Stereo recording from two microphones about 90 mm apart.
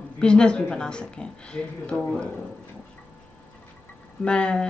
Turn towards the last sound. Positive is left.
turn(degrees=10)  # may be behind; listen again after turning